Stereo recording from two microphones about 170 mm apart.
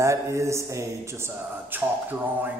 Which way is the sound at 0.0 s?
15° right (ahead or behind).